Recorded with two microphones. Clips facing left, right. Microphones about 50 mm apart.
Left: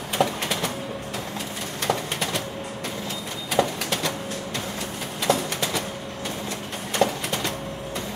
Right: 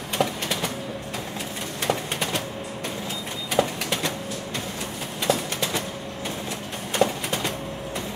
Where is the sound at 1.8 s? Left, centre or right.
Centre.